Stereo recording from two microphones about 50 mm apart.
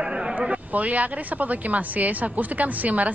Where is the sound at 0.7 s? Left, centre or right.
Right.